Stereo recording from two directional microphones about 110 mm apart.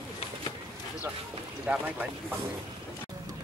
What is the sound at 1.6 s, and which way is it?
Speech, 15° right (ahead or behind).